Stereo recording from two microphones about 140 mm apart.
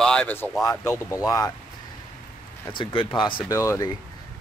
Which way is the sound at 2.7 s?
35° left (ahead or behind).